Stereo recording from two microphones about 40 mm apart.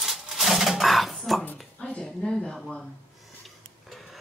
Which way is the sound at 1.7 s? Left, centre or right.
Centre.